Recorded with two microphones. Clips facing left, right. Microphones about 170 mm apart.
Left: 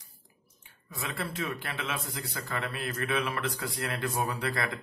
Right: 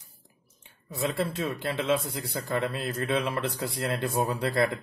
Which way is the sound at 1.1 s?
30° right (ahead or behind).